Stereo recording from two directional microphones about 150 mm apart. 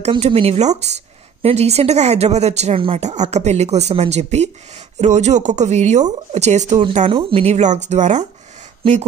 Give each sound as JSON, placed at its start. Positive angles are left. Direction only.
{"t": 0.2, "sound": "speech", "side_deg": -40}
{"t": 7.1, "sound": "speech", "side_deg": -35}